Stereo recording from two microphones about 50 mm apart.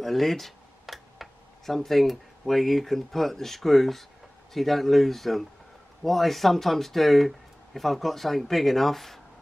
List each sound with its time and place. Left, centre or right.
0.0 s computer keyboard: centre
1.8 s speech: centre